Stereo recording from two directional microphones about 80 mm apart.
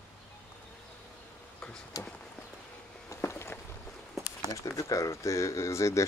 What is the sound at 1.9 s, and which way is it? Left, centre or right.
Speech, left.